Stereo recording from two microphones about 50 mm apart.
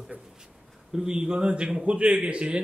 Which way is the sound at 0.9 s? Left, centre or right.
Centre.